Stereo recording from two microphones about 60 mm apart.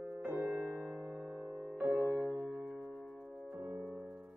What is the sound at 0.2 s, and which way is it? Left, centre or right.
Music, right.